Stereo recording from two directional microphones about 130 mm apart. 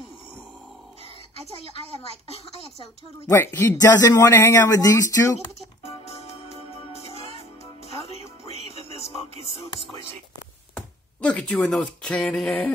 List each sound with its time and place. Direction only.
1.4 s a woman's voice: 50° right (ahead or behind)
2.2 s a woman's voice: 50° left (ahead or behind)
3.3 s speech: 20° left (ahead or behind)
5.9 s music: 55° left (ahead or behind)
8.8 s music: 50° left (ahead or behind)
9.5 s a woman's voice: 50° left (ahead or behind)
11.1 s speech: 10° left (ahead or behind)